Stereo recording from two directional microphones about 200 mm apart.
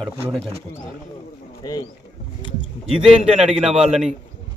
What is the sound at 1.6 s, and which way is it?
Bird, 20° left (ahead or behind).